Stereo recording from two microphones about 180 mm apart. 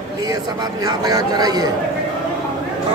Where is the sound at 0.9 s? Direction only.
20° right (ahead or behind).